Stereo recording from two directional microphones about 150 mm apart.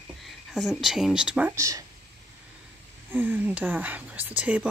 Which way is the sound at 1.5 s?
20° right (ahead or behind).